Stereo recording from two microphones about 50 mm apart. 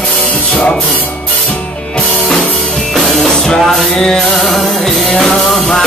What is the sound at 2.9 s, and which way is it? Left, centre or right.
Music, centre.